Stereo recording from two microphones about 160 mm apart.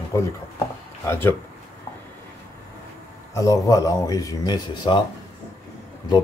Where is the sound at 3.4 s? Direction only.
20° left (ahead or behind).